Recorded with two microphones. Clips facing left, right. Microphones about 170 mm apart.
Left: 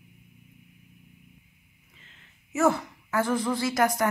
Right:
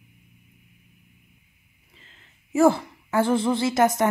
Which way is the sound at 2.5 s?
30° right (ahead or behind).